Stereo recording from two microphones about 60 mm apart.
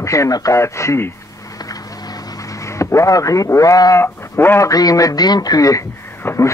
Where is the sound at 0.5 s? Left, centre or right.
Left.